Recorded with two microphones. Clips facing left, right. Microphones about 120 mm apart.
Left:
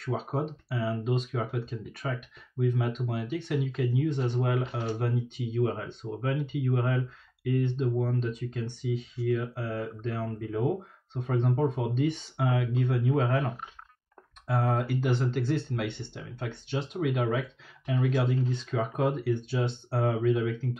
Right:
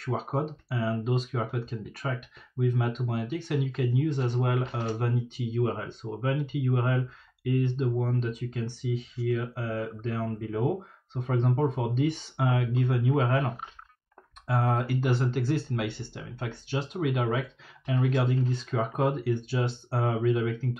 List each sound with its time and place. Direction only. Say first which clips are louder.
0.7 s speech: right 1 dB; centre (ahead or behind)
14.5 s speech: right 1 dB; centre (ahead or behind)
18.7 s speech: right 1 dB; 55° right (ahead or behind)
19.0 s speech: even; centre (ahead or behind)